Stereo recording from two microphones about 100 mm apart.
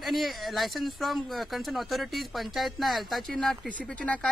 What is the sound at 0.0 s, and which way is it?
A man's voice, centre (ahead or behind).